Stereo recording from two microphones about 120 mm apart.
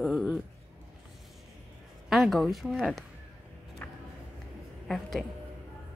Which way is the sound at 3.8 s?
15° left (ahead or behind).